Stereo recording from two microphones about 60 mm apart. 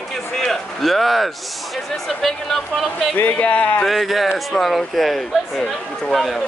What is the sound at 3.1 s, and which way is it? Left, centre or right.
Speech, left.